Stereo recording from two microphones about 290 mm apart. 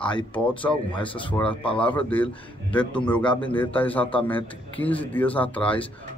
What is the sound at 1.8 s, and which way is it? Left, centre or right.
A man's voice, centre.